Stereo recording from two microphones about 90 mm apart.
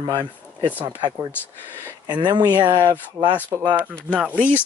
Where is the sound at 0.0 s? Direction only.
55° right (ahead or behind).